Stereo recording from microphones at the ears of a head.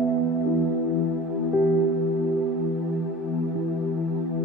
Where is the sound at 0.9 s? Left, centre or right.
Left.